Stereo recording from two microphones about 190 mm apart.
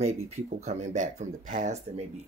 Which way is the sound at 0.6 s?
40° right (ahead or behind).